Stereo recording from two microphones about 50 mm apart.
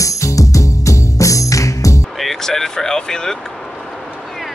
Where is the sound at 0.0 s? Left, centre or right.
Left.